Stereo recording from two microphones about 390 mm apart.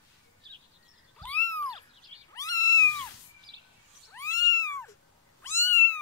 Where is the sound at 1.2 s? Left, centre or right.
Centre.